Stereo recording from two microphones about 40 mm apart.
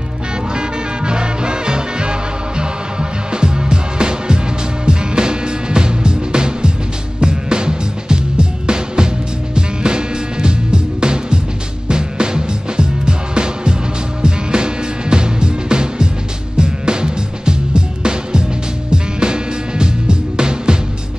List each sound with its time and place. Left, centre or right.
0.6 s music: right